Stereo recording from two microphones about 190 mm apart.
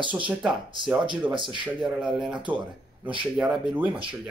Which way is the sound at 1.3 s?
25° right (ahead or behind).